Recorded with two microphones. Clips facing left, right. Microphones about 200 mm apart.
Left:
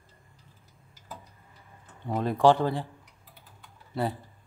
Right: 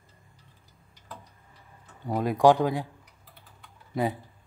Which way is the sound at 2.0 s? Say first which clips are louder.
Right 1 dB; 10° right (ahead or behind).